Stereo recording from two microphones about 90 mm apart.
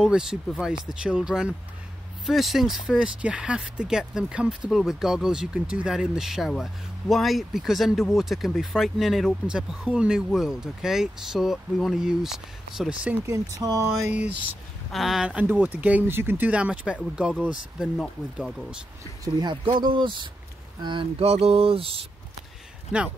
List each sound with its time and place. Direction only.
0.0 s speech: 5° right (ahead or behind)
13.3 s speech: 40° right (ahead or behind)
14.9 s speech: centre (ahead or behind)
15.2 s speech: 15° right (ahead or behind)
16.4 s speech: 15° right (ahead or behind)
17.9 s speech: 5° left (ahead or behind)
19.2 s speech: 60° right (ahead or behind); by 22.0 s 90° right
22.9 s speech: 15° right (ahead or behind)